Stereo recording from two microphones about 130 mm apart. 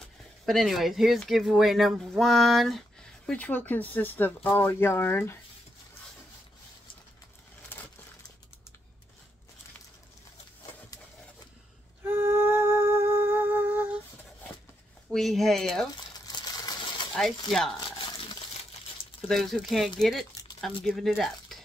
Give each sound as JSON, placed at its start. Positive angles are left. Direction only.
{"t": 0.5, "sound": "speech", "side_deg": 0}
{"t": 3.3, "sound": "speech", "side_deg": 10}
{"t": 12.0, "sound": "music", "side_deg": -15}
{"t": 15.0, "sound": "speech", "side_deg": 0}
{"t": 16.3, "sound": "a sound", "side_deg": 30}
{"t": 17.1, "sound": "speech", "side_deg": 0}
{"t": 19.2, "sound": "speech", "side_deg": 5}